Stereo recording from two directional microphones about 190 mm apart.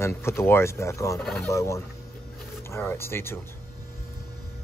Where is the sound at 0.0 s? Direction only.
15° left (ahead or behind).